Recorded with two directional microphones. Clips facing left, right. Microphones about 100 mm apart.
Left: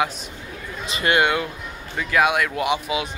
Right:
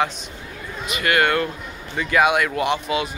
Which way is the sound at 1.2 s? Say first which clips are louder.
Right 1 dB; 10° left (ahead or behind).